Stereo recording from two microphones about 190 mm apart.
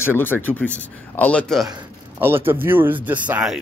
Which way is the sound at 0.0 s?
10° left (ahead or behind).